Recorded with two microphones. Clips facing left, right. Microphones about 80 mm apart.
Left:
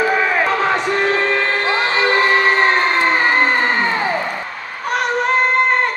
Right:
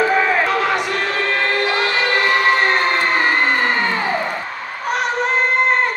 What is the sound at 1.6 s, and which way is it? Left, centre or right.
Music, left.